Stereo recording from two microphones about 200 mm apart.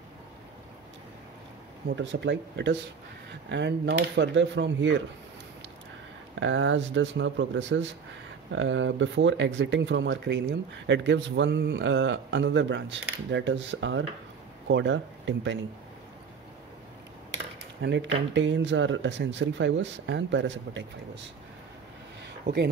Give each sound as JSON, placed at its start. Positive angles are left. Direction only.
{"t": 2.0, "sound": "a man's voice", "side_deg": -60}
{"t": 6.4, "sound": "a man's voice", "side_deg": -70}
{"t": 17.8, "sound": "a man's voice", "side_deg": -60}